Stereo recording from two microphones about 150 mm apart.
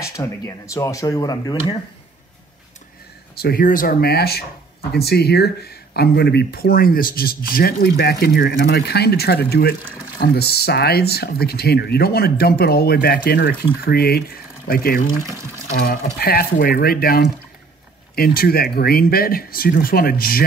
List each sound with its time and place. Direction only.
0.2 s speech: 20° left (ahead or behind)
3.3 s speech: 80° left
15.2 s speech: 20° right (ahead or behind)
15.7 s speech: 75° left (ahead or behind)
16.2 s speech: 90° left